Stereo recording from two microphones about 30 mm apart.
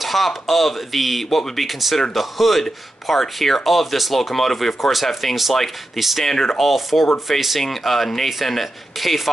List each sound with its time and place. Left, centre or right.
0.0 s speech: centre
6.2 s speech: centre
6.6 s speech: centre